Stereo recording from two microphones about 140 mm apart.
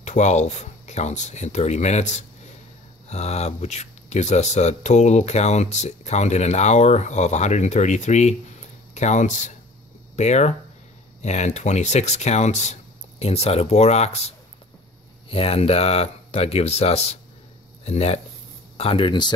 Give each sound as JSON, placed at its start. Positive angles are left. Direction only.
{"t": 0.0, "sound": "speech", "side_deg": 55}